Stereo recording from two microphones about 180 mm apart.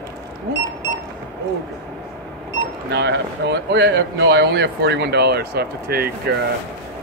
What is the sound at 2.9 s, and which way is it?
Speech, 70° right (ahead or behind).